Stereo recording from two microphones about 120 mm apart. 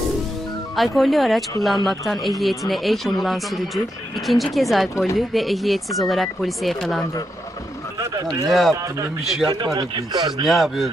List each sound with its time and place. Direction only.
0.7 s speech: centre (ahead or behind)
8.0 s a sound: 30° right (ahead or behind)
8.5 s speech: centre (ahead or behind)
9.5 s speech: 35° right (ahead or behind)
10.4 s speech: centre (ahead or behind)